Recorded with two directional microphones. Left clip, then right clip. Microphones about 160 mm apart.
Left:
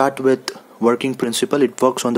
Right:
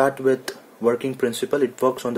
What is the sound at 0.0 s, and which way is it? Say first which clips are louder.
Speech: left 3 dB; 30° left (ahead or behind).